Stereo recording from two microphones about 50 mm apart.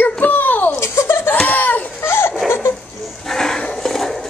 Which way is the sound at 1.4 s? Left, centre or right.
Left.